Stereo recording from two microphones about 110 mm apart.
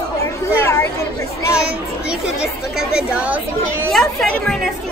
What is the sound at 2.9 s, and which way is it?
Speech, 10° right (ahead or behind).